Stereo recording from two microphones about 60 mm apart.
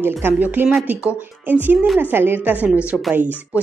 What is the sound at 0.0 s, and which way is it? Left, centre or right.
A woman's voice, right.